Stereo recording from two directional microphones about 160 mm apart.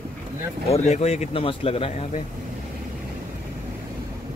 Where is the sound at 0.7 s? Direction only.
45° left (ahead or behind).